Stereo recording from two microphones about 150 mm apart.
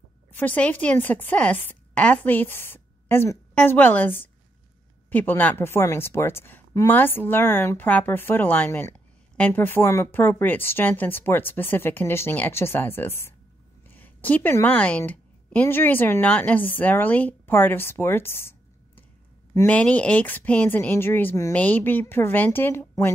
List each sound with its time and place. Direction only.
0.4 s a woman's voice: 10° left (ahead or behind)